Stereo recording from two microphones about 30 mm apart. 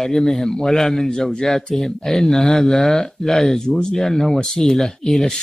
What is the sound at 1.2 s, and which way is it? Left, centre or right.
Speech, left.